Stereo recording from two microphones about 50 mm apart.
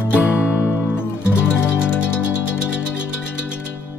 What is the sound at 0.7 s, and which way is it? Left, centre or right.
Music, left.